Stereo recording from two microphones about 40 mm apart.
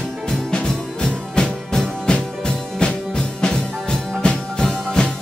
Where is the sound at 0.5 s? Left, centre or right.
Centre.